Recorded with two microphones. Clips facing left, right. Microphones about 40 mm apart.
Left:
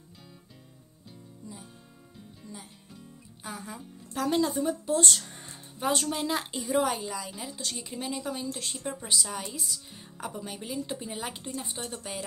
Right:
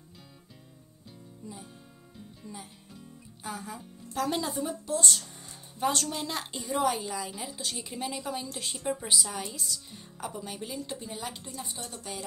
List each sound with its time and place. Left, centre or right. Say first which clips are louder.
2.1 s music: right 1 dB; centre
5.8 s a woman's voice: left 1 dB; centre; by 12.0 s left
12.0 s speech: left 2 dB; centre